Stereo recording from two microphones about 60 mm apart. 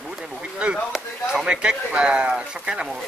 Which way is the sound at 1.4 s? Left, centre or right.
Centre.